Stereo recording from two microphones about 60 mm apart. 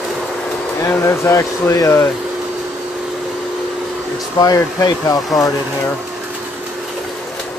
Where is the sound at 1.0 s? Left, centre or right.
Left.